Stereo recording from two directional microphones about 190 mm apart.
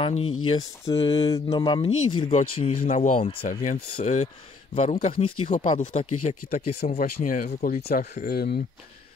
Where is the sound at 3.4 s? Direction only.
45° left (ahead or behind).